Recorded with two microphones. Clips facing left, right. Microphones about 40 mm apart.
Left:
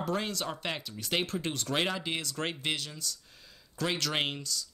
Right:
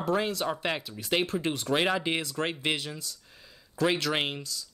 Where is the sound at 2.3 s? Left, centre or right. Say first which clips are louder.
Right 4 dB; centre.